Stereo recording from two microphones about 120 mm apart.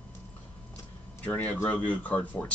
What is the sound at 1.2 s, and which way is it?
Speech, 15° left (ahead or behind).